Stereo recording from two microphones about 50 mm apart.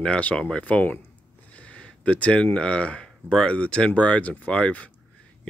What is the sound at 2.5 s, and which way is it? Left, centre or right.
Speech, left.